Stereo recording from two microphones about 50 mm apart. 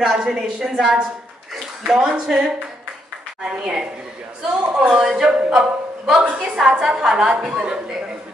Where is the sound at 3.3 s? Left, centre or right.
Centre.